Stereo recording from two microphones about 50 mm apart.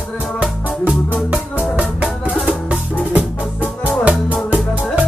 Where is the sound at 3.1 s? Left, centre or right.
Right.